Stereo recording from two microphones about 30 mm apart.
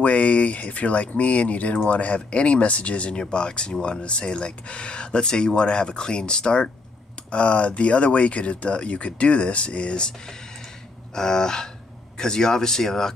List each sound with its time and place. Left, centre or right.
0.0 s speech: left
3.2 s speech: left
7.2 s speech: left
11.1 s speech: left